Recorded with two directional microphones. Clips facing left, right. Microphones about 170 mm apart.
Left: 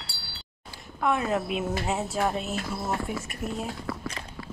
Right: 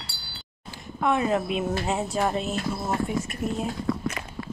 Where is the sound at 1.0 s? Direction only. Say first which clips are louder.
Right 2 dB; centre (ahead or behind).